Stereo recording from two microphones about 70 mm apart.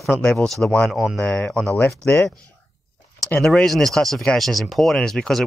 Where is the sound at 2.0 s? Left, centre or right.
Left.